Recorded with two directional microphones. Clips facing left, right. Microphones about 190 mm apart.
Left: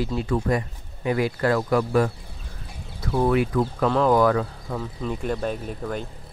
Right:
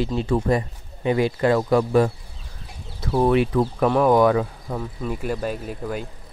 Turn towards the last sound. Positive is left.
turn(degrees=-5)  # may be behind; listen again after turning